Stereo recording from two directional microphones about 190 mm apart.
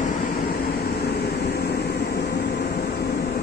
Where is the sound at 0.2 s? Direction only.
55° left (ahead or behind).